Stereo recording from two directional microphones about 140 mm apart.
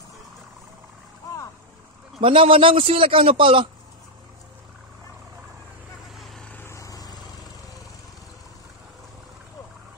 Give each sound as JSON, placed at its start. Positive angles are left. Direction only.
{"t": 1.2, "sound": "boat", "side_deg": 25}
{"t": 2.1, "sound": "a man's voice", "side_deg": -40}
{"t": 6.1, "sound": "vehicle", "side_deg": 0}
{"t": 6.5, "sound": "vehicle", "side_deg": 20}